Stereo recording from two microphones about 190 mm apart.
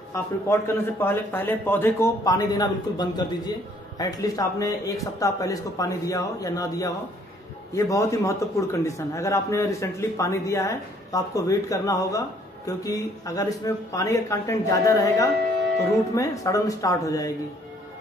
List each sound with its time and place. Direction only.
0.1 s a man's voice: 10° left (ahead or behind)